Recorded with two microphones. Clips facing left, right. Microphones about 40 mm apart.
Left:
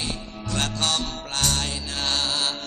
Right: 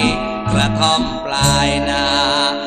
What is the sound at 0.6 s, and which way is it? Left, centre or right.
Music, right.